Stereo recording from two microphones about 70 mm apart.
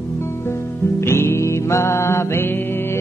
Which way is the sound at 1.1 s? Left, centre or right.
Left.